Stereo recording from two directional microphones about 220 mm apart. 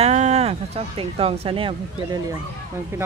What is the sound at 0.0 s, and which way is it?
Speech, 30° right (ahead or behind).